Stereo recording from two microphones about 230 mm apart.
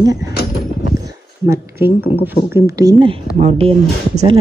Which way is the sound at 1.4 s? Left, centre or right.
Centre.